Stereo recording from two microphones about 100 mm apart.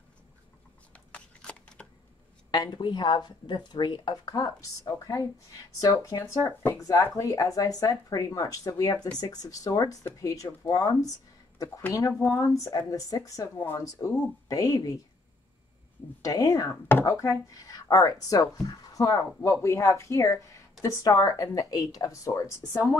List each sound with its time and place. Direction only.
0.9 s shuffling cards: 15° left (ahead or behind)
2.5 s speech: 45° left (ahead or behind)
16.2 s speech: 40° left (ahead or behind)
16.8 s speech: 25° left (ahead or behind)